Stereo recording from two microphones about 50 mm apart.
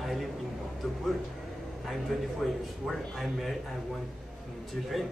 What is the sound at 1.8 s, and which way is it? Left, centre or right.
Speech, centre.